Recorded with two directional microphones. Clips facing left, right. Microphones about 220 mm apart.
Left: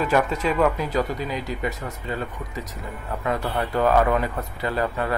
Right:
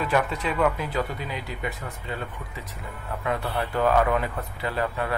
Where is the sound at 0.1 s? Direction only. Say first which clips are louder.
Left 4 dB; 40° left (ahead or behind).